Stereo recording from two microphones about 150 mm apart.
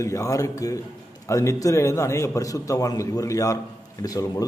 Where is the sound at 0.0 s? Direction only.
20° left (ahead or behind).